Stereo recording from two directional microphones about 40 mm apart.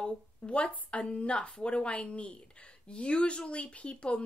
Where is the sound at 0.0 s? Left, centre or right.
Left.